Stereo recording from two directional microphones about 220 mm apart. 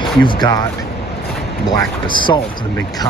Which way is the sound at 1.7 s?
20° left (ahead or behind).